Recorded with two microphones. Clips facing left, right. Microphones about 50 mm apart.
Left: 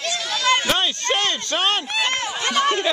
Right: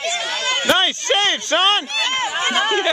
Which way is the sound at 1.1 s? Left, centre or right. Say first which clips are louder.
Right 6 dB; right.